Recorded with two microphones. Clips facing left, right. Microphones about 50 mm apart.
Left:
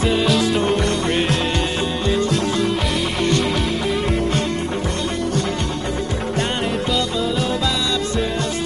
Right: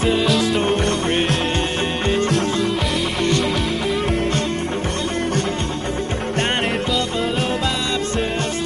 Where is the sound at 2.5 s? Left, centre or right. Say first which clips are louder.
Even; centre.